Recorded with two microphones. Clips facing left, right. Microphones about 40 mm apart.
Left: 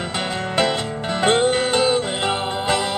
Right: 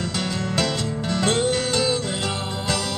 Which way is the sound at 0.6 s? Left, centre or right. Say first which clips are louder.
Left 5 dB; left.